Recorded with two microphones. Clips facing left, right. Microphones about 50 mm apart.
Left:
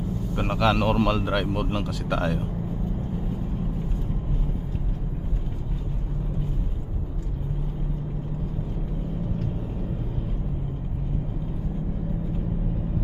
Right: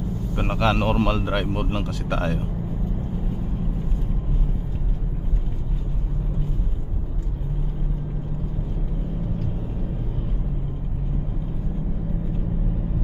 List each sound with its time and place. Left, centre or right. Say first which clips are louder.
0.4 s speech: even; centre